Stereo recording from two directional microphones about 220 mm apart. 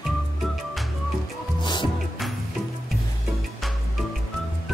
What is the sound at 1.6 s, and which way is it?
Music, 20° left (ahead or behind).